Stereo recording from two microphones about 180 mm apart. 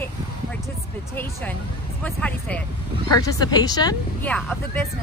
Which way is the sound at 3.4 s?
20° left (ahead or behind).